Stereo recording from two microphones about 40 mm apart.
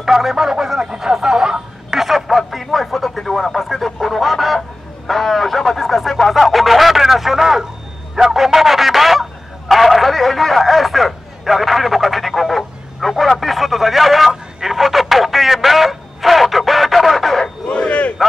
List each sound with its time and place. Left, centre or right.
0.0 s speech: centre
2.0 s speech: centre
8.2 s a sound: centre
14.3 s telephone: centre
17.6 s battle cry: left